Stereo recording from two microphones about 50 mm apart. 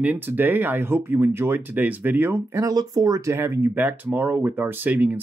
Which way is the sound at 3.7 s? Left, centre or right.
Right.